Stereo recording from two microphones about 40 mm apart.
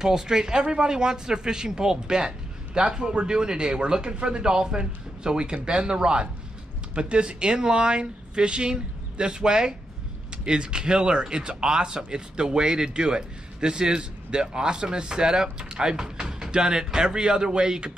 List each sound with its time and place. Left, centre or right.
0.0 s speech: centre